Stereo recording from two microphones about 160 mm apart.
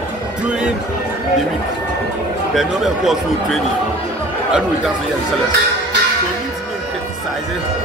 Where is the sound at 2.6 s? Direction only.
Centre (ahead or behind).